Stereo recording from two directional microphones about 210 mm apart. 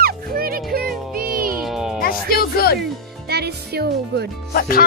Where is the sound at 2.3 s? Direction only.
45° left (ahead or behind).